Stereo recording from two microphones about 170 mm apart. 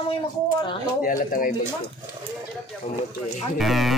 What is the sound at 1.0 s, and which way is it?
Speech, 55° left (ahead or behind).